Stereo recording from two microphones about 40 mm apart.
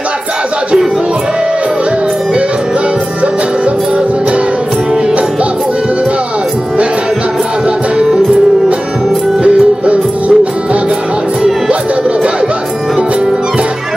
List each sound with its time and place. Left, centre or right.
9.4 s music: right